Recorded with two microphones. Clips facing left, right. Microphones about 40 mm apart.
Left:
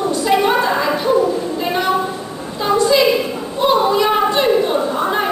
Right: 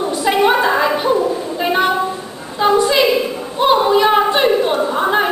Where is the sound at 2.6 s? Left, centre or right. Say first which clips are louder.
Right 1 dB; right.